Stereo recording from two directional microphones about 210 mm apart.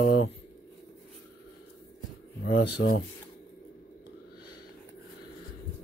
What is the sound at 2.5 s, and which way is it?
Speech, 55° left (ahead or behind).